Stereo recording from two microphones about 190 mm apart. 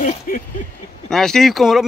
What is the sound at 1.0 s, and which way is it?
Speech, centre (ahead or behind).